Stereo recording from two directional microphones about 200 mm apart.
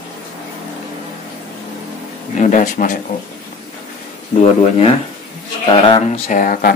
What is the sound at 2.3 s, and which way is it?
Speech, 40° left (ahead or behind).